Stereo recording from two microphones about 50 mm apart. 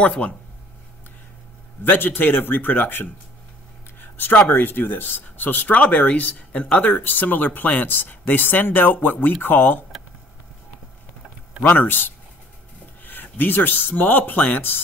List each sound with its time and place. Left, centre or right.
0.0 s speech: left
1.9 s speech: left
11.6 s speech: left